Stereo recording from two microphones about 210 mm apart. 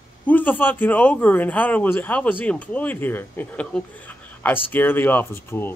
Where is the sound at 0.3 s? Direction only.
10° left (ahead or behind).